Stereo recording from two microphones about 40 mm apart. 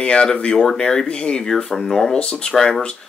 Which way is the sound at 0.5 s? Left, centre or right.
Centre.